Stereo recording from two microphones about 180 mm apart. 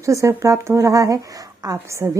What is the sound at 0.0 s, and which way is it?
A woman's voice, 15° right (ahead or behind).